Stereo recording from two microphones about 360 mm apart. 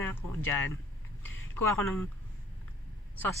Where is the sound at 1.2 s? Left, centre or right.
Left.